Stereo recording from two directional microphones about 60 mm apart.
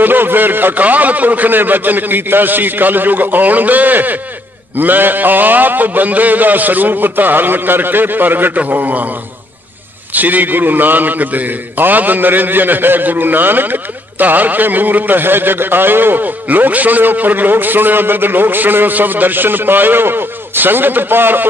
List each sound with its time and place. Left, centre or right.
0.0 s a man's voice: right
10.1 s a man's voice: right